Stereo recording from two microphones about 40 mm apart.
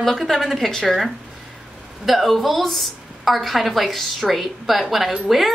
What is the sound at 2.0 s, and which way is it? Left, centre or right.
Speech, centre.